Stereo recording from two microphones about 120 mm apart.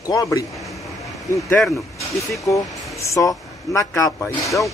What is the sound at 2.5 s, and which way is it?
Speech, 30° left (ahead or behind).